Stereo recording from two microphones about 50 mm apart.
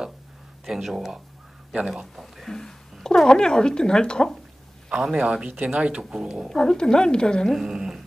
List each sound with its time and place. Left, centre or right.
0.7 s speech: centre
2.5 s a sound: centre
4.8 s speech: centre
5.5 s speech: right
5.8 s speech: centre
6.5 s speech: centre
7.4 s speech: centre
7.7 s a sound: centre